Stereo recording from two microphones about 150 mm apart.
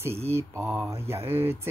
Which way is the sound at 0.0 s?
15° right (ahead or behind).